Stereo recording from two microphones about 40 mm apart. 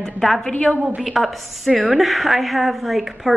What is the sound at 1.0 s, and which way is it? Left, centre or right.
A woman's voice, centre.